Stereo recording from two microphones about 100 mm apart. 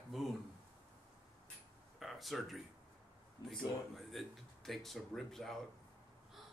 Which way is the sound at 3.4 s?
Centre (ahead or behind).